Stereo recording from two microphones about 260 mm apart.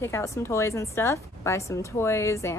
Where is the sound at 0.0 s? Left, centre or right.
Centre.